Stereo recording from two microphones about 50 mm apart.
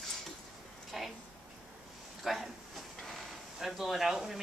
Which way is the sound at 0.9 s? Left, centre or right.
Centre.